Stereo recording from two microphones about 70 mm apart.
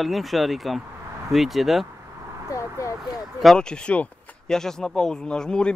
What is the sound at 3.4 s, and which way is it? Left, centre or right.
Speech, centre.